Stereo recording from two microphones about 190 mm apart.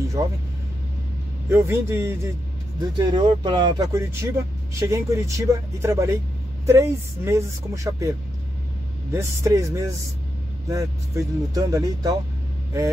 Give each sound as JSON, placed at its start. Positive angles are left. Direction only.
{"t": 0.2, "sound": "speech", "side_deg": -20}
{"t": 1.5, "sound": "speech", "side_deg": -15}
{"t": 9.1, "sound": "speech", "side_deg": -15}